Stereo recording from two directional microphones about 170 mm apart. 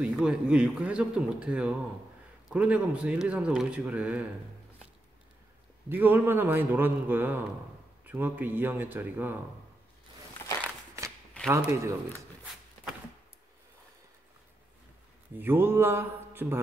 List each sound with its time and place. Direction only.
0.0 s speech: 5° right (ahead or behind)
5.9 s speech: 10° right (ahead or behind)
11.4 s speech: 15° right (ahead or behind)
15.3 s speech: 10° right (ahead or behind)